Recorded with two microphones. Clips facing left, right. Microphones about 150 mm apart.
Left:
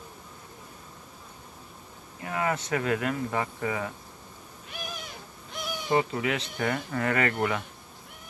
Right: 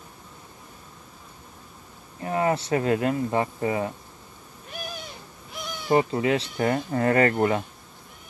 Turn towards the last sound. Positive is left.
turn(degrees=-35)  # may be behind; listen again after turning